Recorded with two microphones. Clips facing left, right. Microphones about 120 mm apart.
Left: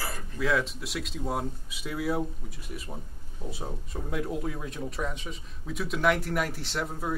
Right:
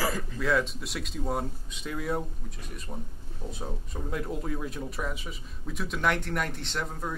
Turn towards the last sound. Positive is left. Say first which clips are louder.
# left 2 dB
turn(degrees=5)  # may be behind; listen again after turning